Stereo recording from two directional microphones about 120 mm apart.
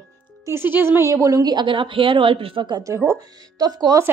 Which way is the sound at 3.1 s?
30° right (ahead or behind).